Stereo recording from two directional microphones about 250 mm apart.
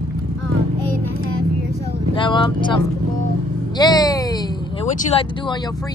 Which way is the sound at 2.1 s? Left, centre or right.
Centre.